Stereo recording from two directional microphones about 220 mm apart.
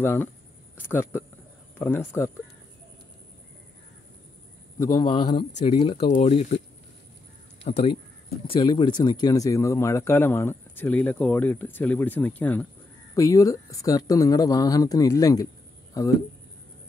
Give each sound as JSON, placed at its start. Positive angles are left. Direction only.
{"t": 0.0, "sound": "speech", "side_deg": 10}
{"t": 4.7, "sound": "speech", "side_deg": 20}
{"t": 7.6, "sound": "speech", "side_deg": 30}